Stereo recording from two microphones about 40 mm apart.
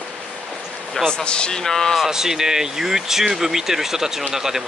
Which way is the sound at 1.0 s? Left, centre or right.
Left.